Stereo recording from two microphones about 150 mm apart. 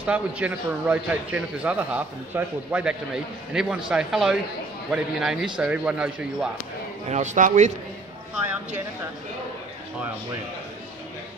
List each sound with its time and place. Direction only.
0.0 s a man's voice: 10° right (ahead or behind)
7.1 s speech: 50° right (ahead or behind)